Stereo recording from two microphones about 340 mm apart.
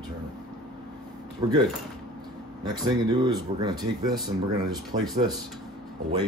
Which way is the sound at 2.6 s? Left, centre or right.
Centre.